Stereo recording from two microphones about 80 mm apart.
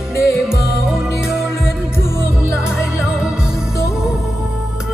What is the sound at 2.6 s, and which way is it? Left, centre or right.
Music, left.